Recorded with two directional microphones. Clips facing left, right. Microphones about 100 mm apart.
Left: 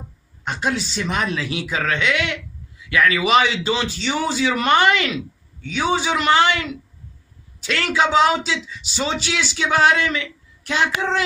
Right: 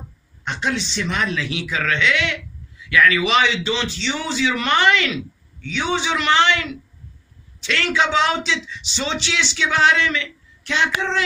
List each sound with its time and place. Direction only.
0.5 s a man's voice: 40° left (ahead or behind)